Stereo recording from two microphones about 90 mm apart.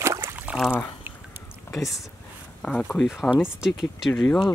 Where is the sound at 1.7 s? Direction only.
Centre (ahead or behind).